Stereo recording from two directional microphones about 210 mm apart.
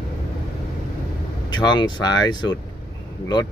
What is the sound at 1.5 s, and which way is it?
Speech, 20° left (ahead or behind).